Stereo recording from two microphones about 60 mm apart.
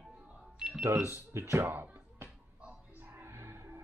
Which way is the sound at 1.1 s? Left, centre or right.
Right.